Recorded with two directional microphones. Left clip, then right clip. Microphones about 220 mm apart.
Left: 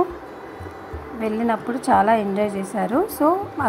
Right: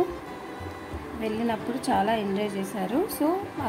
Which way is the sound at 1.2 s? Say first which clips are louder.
Left 6 dB; 10° left (ahead or behind).